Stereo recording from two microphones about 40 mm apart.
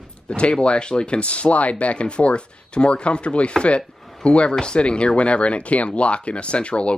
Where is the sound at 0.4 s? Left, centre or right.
Left.